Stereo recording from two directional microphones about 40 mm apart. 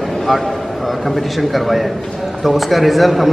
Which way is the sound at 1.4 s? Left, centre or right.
Centre.